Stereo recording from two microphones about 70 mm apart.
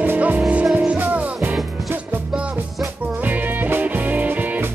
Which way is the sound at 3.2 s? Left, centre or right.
Right.